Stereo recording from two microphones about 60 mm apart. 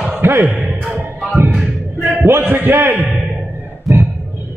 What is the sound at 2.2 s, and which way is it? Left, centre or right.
Speech, right.